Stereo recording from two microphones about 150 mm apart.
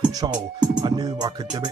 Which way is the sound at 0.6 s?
30° right (ahead or behind).